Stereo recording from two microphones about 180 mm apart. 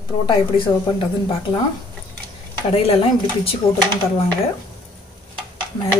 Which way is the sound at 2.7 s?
30° left (ahead or behind).